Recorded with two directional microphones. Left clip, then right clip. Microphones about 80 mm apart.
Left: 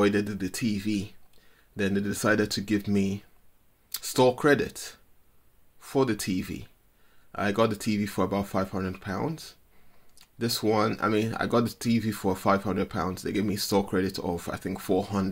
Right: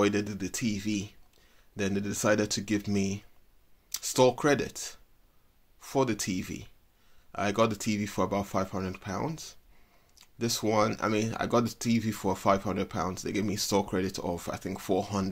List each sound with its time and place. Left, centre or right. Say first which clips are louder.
0.0 s speech: left 3 dB; right